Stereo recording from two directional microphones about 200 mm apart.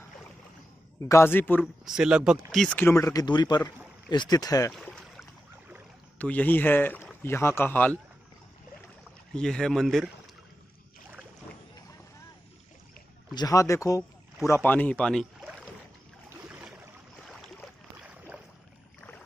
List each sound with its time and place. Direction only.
1.0 s speech: 15° left (ahead or behind)
1.6 s speech: 5° right (ahead or behind); by 4.7 s 15° left (ahead or behind)
4.7 s a sound: centre (ahead or behind)
6.1 s speech: 10° left (ahead or behind)
9.3 s speech: 5° left (ahead or behind)
13.3 s speech: 20° left (ahead or behind); by 15.7 s centre (ahead or behind)
16.4 s boat: 5° right (ahead or behind)